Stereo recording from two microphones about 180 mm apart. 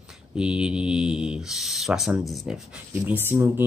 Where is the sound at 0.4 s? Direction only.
5° right (ahead or behind).